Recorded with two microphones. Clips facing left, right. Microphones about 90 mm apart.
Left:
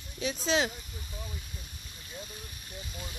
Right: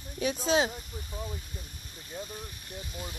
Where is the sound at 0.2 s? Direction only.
45° right (ahead or behind).